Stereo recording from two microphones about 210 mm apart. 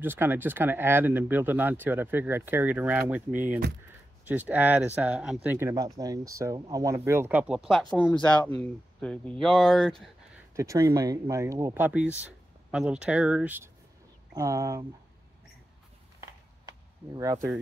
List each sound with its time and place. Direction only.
0.0 s speech: 10° right (ahead or behind)
10.5 s speech: 15° right (ahead or behind)